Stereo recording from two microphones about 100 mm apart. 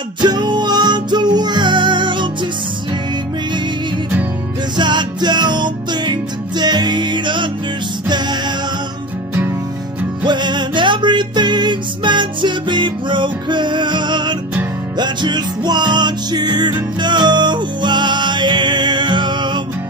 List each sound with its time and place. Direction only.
0.2 s music: 50° right (ahead or behind)
4.7 s music: 50° right (ahead or behind)
10.2 s music: 50° right (ahead or behind)